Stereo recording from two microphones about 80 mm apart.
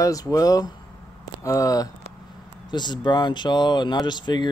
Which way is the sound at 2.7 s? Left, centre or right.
Left.